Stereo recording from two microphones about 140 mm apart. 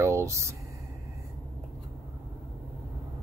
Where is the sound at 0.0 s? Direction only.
20° right (ahead or behind).